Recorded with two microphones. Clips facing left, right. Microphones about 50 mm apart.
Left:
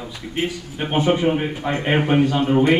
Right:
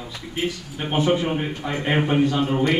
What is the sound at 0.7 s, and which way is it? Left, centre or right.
Speech, left.